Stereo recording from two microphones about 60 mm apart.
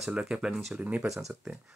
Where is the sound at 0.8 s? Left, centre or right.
Right.